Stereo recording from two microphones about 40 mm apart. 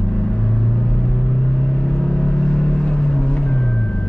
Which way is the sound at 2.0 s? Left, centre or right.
Centre.